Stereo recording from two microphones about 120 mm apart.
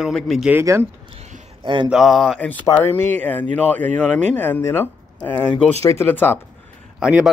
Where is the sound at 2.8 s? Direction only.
20° left (ahead or behind).